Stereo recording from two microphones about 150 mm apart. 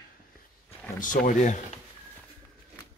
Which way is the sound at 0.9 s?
60° left (ahead or behind).